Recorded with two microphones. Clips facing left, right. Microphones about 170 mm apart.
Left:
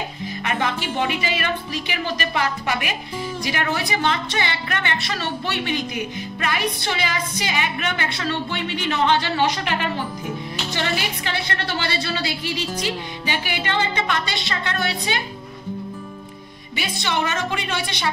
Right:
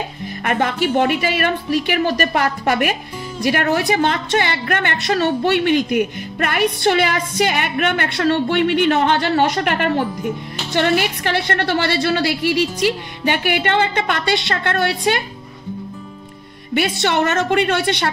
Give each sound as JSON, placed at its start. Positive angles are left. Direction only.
{"t": 0.4, "sound": "a woman's voice", "side_deg": -50}
{"t": 16.7, "sound": "a woman's voice", "side_deg": -60}